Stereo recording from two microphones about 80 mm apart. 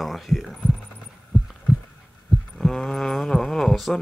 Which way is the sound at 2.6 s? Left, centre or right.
Centre.